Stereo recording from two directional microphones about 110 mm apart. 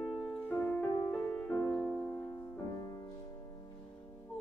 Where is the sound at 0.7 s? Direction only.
20° left (ahead or behind).